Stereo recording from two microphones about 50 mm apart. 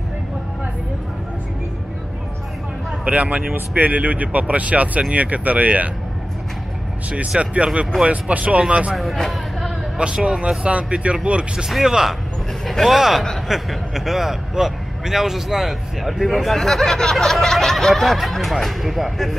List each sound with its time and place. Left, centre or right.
3.1 s speech: right
7.1 s speech: right
8.9 s a man's voice: centre
9.9 s speech: right
11.7 s speech: centre
12.6 s a man's voice: centre